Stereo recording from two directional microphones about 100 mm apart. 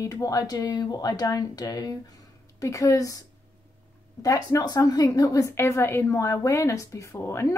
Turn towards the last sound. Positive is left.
turn(degrees=25)  # may be behind; listen again after turning